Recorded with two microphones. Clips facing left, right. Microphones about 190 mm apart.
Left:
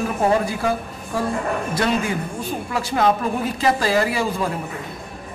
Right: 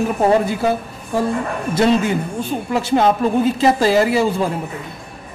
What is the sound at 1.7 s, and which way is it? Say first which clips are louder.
Speech: right 8 dB; 25° right (ahead or behind).